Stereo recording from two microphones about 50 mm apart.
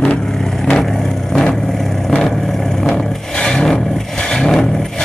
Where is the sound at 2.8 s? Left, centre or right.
Centre.